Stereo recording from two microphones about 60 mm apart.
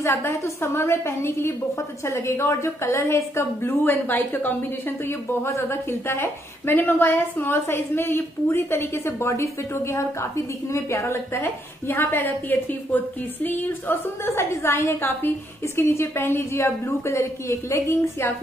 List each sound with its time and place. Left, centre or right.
0.0 s a woman's voice: left
3.8 s a woman's voice: left
11.9 s a woman's voice: left
14.2 s a woman's voice: left